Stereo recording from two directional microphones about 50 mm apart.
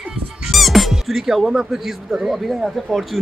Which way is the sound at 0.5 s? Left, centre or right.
Centre.